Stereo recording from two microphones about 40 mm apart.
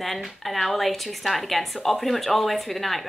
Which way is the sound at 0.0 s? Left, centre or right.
Centre.